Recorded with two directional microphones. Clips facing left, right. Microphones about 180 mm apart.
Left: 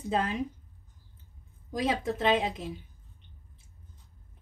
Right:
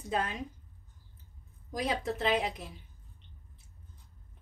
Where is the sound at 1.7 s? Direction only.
25° left (ahead or behind).